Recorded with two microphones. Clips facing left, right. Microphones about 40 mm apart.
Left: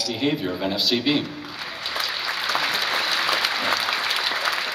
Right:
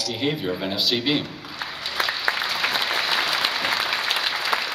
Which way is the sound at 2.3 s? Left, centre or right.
Right.